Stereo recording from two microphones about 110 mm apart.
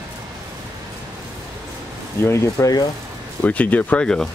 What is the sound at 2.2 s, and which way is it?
Speech, 25° left (ahead or behind).